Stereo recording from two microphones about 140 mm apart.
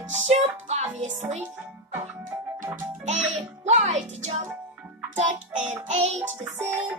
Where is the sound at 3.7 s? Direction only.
55° right (ahead or behind).